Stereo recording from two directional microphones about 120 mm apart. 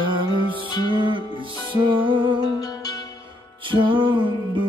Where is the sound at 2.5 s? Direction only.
35° left (ahead or behind).